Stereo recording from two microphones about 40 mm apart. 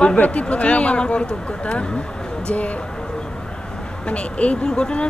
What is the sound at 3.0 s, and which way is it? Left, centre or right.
Vehicle, centre.